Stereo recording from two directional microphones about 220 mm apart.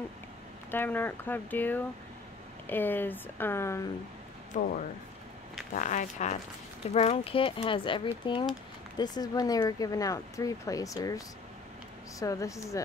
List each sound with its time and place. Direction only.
0.7 s speech: 10° left (ahead or behind)
4.6 s speech: 35° left (ahead or behind); by 12.8 s 15° left (ahead or behind)